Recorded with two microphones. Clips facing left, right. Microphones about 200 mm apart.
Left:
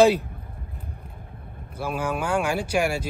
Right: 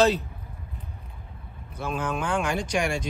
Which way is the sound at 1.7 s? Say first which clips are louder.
Left 2 dB; 10° left (ahead or behind).